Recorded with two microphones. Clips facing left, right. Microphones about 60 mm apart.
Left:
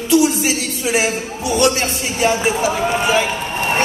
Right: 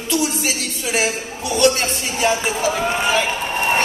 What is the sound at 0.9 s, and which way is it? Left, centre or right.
A man's voice, centre.